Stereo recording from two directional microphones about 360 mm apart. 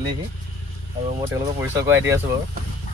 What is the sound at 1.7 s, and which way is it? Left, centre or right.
Speech, centre.